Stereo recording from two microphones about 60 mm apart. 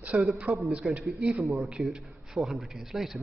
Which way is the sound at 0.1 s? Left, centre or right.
Right.